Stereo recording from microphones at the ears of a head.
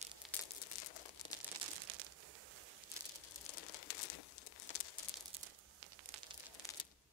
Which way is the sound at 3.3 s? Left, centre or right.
Left.